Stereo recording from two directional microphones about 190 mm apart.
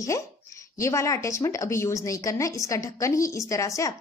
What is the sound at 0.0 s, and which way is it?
A woman's voice, 15° left (ahead or behind).